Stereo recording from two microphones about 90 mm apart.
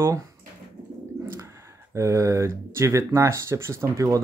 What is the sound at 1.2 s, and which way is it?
Bird, 25° right (ahead or behind).